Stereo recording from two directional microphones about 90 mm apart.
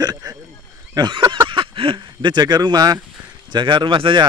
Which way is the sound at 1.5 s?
80° right.